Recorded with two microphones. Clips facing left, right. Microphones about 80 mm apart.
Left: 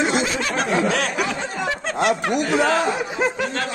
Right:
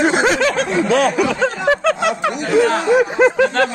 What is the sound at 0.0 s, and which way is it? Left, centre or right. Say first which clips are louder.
Snicker: right 7 dB; right.